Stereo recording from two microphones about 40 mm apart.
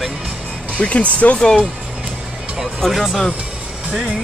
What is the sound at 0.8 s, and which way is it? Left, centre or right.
Speech, left.